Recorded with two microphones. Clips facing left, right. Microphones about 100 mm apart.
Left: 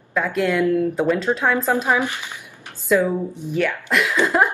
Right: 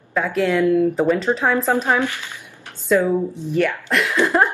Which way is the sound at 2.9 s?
5° left (ahead or behind).